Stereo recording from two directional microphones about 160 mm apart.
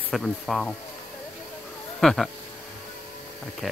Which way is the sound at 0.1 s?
5° left (ahead or behind).